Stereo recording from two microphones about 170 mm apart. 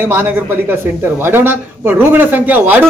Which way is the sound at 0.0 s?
10° right (ahead or behind).